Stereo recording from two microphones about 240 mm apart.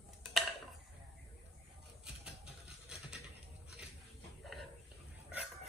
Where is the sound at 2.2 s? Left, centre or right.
Centre.